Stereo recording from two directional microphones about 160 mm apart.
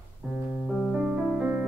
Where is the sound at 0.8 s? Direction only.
5° right (ahead or behind).